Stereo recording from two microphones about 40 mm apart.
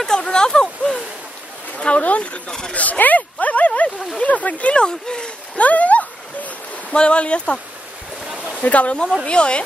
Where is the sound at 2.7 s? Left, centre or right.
Left; by 5.6 s centre.